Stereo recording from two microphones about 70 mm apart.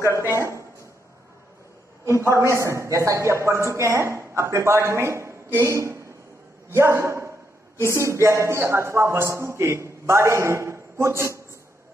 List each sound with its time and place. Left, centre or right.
0.2 s a man's voice: right
2.3 s a man's voice: right